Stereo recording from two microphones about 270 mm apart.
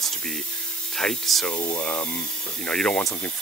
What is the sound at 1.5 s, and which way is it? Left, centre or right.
Speech, centre.